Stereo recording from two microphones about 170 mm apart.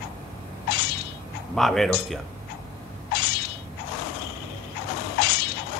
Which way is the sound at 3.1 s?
70° left (ahead or behind).